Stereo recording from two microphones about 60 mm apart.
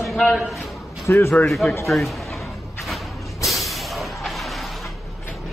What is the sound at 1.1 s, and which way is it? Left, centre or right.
Speech, left.